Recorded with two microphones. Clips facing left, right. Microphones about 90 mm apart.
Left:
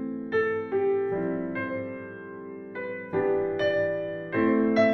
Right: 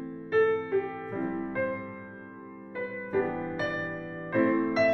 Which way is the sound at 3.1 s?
5° left (ahead or behind).